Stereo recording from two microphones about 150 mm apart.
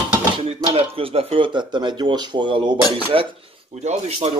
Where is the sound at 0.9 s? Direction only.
40° right (ahead or behind).